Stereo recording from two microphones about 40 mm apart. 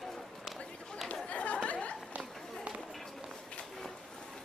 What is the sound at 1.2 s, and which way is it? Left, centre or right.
Chatter, left.